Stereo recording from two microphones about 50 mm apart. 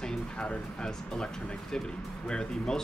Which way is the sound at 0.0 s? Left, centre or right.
Centre.